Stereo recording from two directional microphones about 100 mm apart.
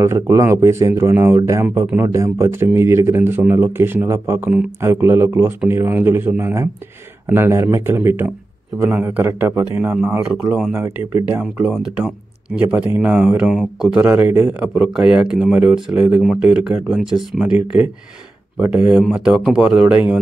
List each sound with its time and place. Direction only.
0.0 s speech: 30° right (ahead or behind)
10.3 s speech: 5° right (ahead or behind)
10.7 s speech: 20° right (ahead or behind)
17.0 s speech: 5° right (ahead or behind)